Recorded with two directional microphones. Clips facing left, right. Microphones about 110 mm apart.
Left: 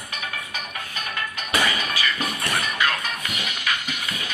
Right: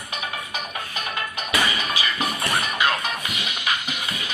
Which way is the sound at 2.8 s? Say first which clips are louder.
Right 2 dB; 20° right (ahead or behind).